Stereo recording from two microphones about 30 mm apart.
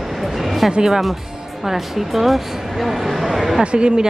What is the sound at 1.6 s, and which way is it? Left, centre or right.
Speech, centre.